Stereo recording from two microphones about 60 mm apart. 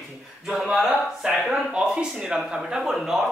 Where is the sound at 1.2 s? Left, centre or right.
Centre.